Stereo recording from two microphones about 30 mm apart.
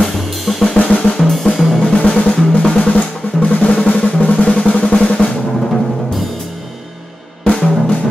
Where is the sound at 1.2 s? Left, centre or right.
Centre.